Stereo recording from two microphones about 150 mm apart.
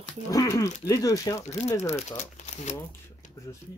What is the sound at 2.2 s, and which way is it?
Speech, 50° left (ahead or behind).